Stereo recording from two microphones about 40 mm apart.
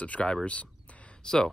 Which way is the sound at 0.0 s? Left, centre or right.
Left.